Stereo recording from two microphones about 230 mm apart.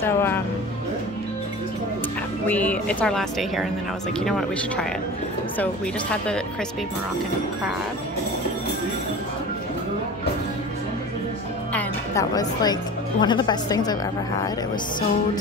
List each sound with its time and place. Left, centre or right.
0.0 s speech: centre
2.4 s a woman's voice: centre
11.7 s music: centre
13.2 s speech: centre